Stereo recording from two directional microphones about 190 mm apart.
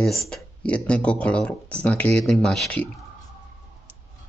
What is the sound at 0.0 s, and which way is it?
Speech, centre (ahead or behind).